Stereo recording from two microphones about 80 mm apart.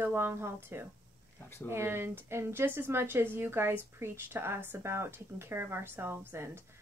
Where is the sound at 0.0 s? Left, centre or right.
Right.